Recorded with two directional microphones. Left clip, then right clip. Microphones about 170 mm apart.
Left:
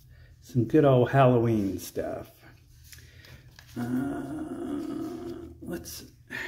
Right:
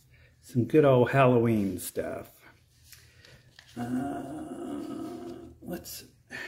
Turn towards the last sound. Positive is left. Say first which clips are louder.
# left 3 dB
turn(degrees=0)  # may be behind; listen again after turning